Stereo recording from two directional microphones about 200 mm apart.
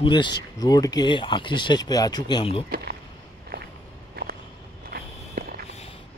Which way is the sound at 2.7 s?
50° right (ahead or behind).